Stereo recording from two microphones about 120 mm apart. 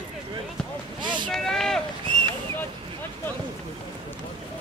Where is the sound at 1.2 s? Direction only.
5° left (ahead or behind).